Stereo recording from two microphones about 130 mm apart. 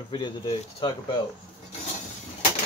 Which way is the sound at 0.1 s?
35° left (ahead or behind).